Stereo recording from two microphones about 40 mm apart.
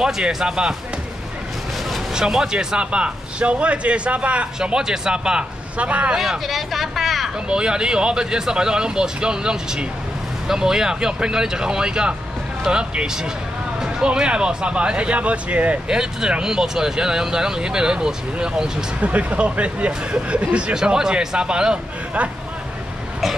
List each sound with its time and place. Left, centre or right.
0.0 s speech: centre
2.1 s speech: centre; by 4.5 s right
4.6 s speech: centre
5.8 s speech: right
6.1 s speech: centre
7.4 s speech: right
15.9 s speech: right
18.9 s speech: right
20.7 s speech: centre